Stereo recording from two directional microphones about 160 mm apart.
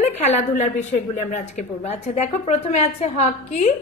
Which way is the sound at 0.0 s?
45° left (ahead or behind).